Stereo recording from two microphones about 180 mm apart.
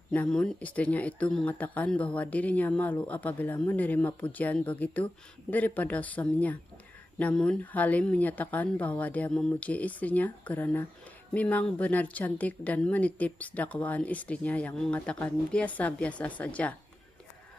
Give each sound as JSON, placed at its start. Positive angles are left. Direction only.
{"t": 0.1, "sound": "speech", "side_deg": 5}